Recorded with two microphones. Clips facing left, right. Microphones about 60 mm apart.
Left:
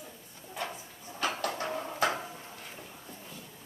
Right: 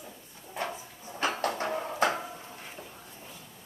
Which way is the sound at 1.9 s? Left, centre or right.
Right.